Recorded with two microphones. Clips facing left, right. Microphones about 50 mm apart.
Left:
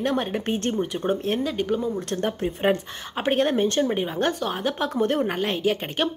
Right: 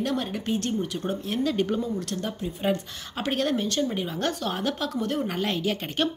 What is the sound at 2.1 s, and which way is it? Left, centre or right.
Speech, left.